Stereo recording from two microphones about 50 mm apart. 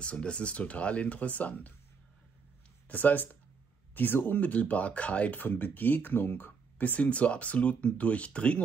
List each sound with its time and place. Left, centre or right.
0.0 s speech: left
2.9 s speech: left
5.4 s speech: left